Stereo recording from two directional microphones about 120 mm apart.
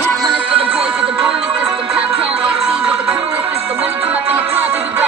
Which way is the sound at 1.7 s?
50° right (ahead or behind).